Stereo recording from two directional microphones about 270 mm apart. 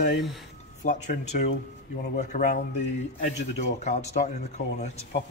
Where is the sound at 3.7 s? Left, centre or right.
Left.